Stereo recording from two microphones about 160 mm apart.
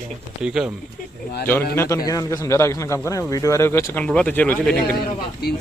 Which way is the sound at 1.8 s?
20° left (ahead or behind).